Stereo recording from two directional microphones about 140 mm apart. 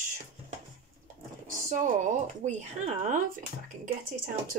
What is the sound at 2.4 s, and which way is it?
Speech, 60° right (ahead or behind).